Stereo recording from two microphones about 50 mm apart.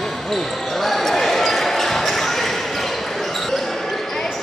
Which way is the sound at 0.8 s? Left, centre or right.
Centre.